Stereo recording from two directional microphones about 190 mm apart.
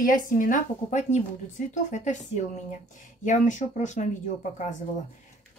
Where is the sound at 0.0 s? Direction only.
45° left (ahead or behind).